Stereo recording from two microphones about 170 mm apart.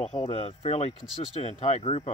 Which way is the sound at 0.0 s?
35° left (ahead or behind).